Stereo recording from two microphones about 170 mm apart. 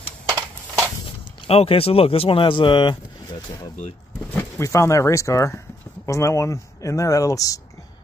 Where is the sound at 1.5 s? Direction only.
35° left (ahead or behind).